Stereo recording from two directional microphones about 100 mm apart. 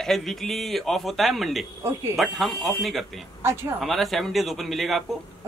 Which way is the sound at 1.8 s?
25° right (ahead or behind).